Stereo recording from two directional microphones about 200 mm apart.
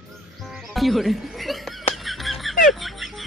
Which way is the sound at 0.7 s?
Centre (ahead or behind).